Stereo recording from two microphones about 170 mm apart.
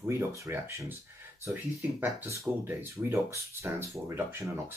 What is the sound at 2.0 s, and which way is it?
Speech, 15° right (ahead or behind).